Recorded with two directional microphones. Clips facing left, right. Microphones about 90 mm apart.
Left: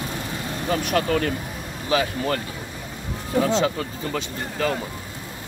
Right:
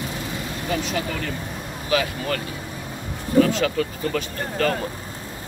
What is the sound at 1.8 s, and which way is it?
Speech, 30° left (ahead or behind).